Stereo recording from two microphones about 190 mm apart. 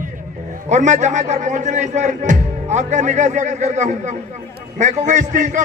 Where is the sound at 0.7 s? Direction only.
40° right (ahead or behind).